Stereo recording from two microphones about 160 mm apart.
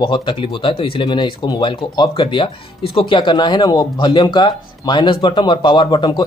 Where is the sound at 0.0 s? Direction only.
30° left (ahead or behind).